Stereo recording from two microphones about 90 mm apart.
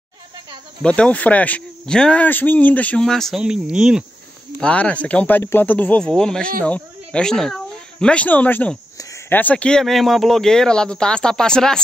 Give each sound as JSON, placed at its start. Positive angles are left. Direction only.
{"t": 0.8, "sound": "speech", "side_deg": 10}
{"t": 3.1, "sound": "speech", "side_deg": 5}
{"t": 3.3, "sound": "speech", "side_deg": -5}
{"t": 4.6, "sound": "speech", "side_deg": 10}